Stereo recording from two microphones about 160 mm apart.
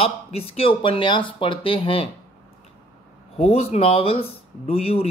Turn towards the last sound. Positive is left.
turn(degrees=40)  # may be behind; listen again after turning